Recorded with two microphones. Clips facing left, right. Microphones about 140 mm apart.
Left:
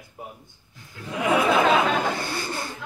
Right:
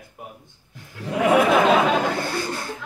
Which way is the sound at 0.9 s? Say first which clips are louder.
Right 6 dB; 65° right (ahead or behind).